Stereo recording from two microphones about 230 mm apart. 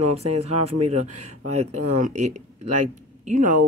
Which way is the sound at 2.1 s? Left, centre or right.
Right.